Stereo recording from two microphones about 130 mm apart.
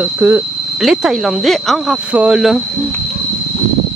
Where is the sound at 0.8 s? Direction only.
Centre (ahead or behind).